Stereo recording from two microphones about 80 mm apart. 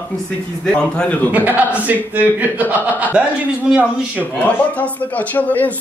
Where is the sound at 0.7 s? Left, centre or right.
Centre.